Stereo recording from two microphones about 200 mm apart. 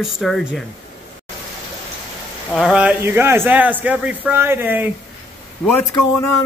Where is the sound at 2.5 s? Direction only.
5° right (ahead or behind).